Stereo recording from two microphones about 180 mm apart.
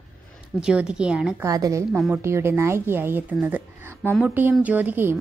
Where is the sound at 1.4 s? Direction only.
20° right (ahead or behind).